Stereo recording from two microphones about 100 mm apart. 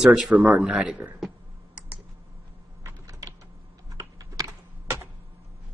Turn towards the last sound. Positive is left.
turn(degrees=-35)  # may be behind; listen again after turning